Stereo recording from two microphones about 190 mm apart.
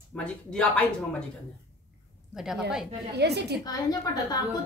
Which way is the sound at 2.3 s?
Centre (ahead or behind).